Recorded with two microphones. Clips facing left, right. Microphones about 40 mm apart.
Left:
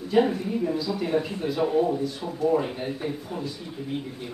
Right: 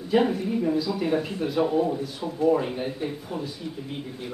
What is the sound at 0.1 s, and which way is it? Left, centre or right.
A man's voice, centre.